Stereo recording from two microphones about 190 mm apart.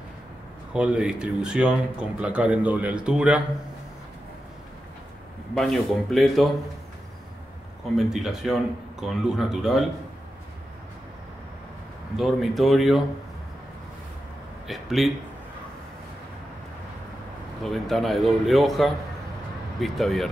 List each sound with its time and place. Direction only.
0.7 s speech: 5° right (ahead or behind)
5.5 s speech: centre (ahead or behind)
7.9 s speech: centre (ahead or behind)
12.2 s speech: centre (ahead or behind)
14.7 s speech: centre (ahead or behind)
17.6 s speech: centre (ahead or behind)